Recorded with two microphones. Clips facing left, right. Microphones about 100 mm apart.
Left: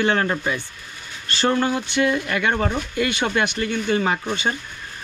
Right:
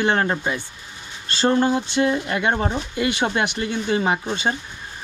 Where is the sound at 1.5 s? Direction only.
30° right (ahead or behind).